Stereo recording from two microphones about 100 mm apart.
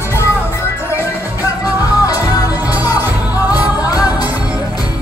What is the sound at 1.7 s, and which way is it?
Music, 35° left (ahead or behind).